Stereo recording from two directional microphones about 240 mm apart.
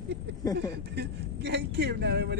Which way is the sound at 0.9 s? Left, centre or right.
Right.